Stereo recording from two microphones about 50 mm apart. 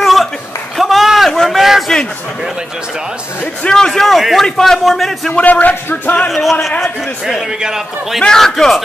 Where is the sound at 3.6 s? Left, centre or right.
Centre.